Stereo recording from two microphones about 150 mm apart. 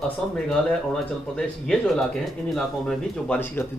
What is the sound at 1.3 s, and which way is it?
Speech, 5° left (ahead or behind).